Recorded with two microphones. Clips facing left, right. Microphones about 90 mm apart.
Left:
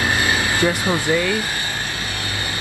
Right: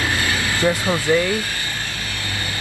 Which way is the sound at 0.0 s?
20° left (ahead or behind).